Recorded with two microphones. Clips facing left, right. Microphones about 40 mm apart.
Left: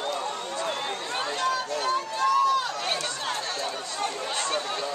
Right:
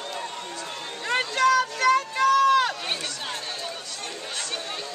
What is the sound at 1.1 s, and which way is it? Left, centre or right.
Run, right.